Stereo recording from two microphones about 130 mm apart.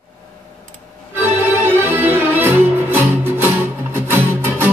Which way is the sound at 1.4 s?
15° right (ahead or behind).